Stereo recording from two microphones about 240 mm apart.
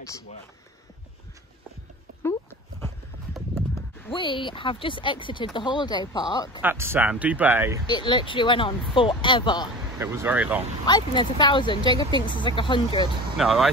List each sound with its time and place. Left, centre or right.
3.7 s speech: left
6.6 s speech: centre
7.9 s speech: centre
9.9 s speech: centre
10.9 s speech: centre
13.4 s speech: centre